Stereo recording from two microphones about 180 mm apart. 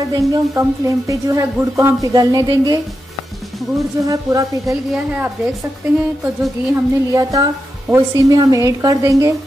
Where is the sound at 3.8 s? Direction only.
20° right (ahead or behind).